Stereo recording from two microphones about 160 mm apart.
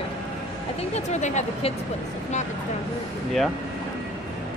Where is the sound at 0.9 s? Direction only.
45° left (ahead or behind).